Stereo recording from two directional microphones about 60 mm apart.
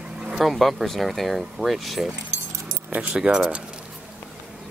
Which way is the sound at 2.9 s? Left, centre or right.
Right.